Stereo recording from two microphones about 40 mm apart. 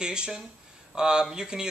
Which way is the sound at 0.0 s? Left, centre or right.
Right.